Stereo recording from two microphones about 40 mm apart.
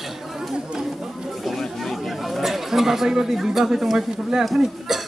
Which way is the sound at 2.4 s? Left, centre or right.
Centre.